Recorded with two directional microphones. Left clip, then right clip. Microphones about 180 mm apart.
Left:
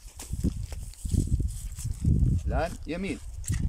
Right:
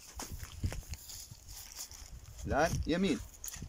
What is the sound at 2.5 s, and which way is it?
Speech, 5° left (ahead or behind).